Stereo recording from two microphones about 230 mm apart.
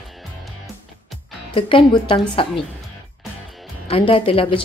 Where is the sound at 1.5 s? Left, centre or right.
Left.